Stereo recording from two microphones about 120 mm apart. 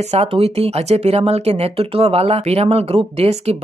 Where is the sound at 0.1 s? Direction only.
55° right (ahead or behind).